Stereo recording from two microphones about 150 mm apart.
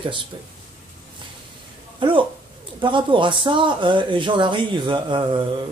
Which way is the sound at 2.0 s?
35° right (ahead or behind).